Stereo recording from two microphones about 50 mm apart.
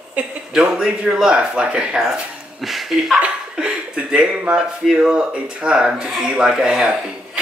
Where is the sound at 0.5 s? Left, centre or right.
Centre.